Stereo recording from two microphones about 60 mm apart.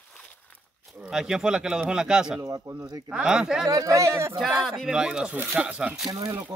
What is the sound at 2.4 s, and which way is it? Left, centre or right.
Speech, right.